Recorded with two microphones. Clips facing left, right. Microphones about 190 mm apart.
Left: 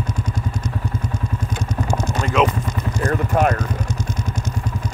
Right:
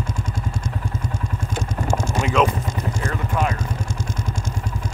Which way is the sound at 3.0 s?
50° left (ahead or behind).